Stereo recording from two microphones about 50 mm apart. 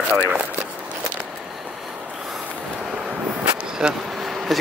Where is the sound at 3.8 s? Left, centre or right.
Centre.